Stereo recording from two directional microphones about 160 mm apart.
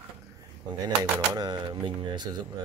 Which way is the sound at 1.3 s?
25° right (ahead or behind).